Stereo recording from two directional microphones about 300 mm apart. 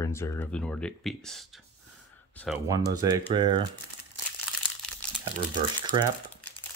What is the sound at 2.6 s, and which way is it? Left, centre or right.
Speech, centre.